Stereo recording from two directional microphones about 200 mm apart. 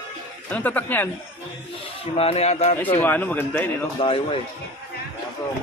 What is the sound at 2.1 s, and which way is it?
Speech, 30° left (ahead or behind).